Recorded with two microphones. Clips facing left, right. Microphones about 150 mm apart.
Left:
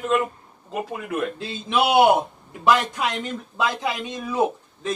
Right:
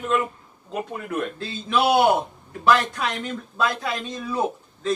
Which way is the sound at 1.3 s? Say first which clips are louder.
Even; 15° left (ahead or behind).